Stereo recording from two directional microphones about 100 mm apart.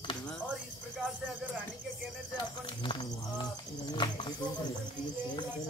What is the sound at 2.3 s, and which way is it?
Speech, 60° left (ahead or behind).